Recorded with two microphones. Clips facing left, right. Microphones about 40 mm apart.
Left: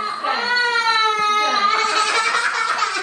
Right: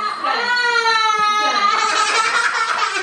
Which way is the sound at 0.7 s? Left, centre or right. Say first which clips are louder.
Right 3 dB; centre.